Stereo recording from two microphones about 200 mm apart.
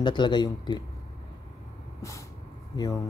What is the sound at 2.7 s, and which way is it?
Speech, 20° left (ahead or behind).